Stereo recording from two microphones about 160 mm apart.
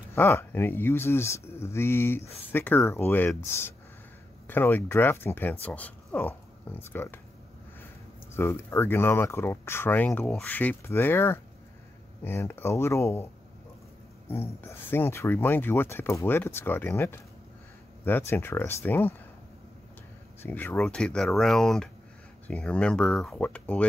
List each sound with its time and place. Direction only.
0.1 s speech: 15° left (ahead or behind)
8.4 s speech: 15° left (ahead or behind)
18.3 s speech: 15° left (ahead or behind)
20.4 s speech: 10° left (ahead or behind)